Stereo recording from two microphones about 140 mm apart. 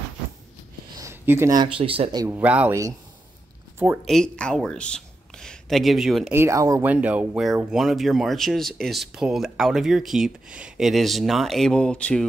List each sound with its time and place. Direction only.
0.9 s a sound: 20° right (ahead or behind)
1.5 s speech: 35° right (ahead or behind)
2.3 s speech: 10° right (ahead or behind)
4.0 s speech: 5° left (ahead or behind)
6.3 s speech: 20° right (ahead or behind)
6.9 s speech: 10° right (ahead or behind); by 12.3 s 5° left (ahead or behind)